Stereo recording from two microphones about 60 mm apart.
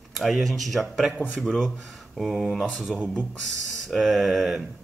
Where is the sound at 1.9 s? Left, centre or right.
Centre.